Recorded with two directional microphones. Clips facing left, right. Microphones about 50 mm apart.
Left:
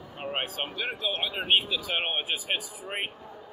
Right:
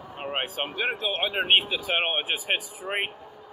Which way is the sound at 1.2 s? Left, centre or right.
Right.